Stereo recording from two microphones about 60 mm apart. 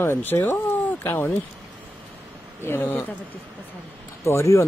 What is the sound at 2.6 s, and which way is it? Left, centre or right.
Speech, left.